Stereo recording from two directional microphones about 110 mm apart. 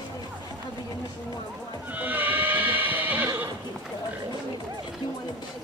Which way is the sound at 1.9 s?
15° right (ahead or behind).